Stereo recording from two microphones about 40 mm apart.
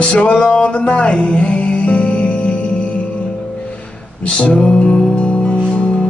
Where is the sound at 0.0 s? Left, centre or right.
Left.